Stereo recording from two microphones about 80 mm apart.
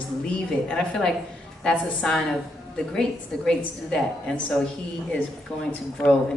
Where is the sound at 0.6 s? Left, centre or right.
Centre.